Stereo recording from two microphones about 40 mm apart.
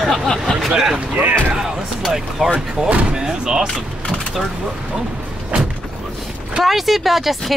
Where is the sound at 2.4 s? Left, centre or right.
Centre.